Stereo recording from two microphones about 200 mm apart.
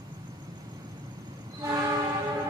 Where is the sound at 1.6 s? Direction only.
15° right (ahead or behind).